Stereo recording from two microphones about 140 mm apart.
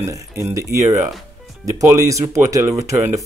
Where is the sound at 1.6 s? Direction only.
25° right (ahead or behind).